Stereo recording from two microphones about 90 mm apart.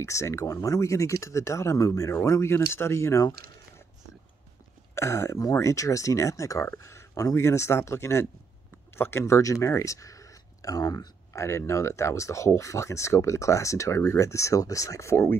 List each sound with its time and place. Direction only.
0.0 s speech: 35° left (ahead or behind)
4.9 s speech: 30° left (ahead or behind); by 11.1 s 45° left (ahead or behind)
11.3 s speech: 30° left (ahead or behind)